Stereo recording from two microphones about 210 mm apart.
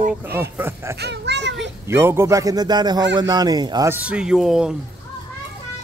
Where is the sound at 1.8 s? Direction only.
10° right (ahead or behind).